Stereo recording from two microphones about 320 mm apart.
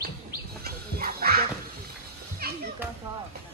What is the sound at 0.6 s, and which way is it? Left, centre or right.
Dog, right.